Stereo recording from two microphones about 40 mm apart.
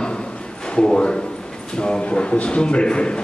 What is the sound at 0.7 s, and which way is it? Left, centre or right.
A man's voice, left.